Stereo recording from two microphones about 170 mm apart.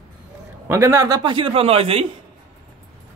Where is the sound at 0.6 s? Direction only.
15° right (ahead or behind); by 2.0 s 35° right (ahead or behind).